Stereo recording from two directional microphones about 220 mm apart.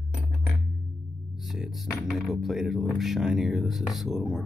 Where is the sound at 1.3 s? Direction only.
Centre (ahead or behind).